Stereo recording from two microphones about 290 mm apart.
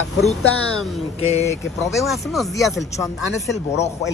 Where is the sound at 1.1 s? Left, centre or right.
Left.